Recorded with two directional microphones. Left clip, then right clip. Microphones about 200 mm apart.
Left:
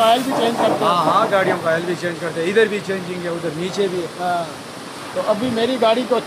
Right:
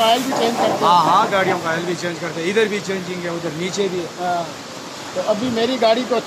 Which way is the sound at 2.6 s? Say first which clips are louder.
Left 2 dB; 15° right (ahead or behind).